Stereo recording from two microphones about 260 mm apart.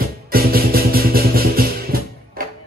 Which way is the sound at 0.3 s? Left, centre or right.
Right.